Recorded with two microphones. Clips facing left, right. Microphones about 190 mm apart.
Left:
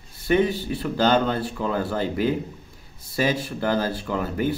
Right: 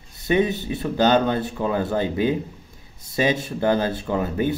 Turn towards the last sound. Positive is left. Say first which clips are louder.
# right 2 dB
turn(degrees=-20)  # may be behind; listen again after turning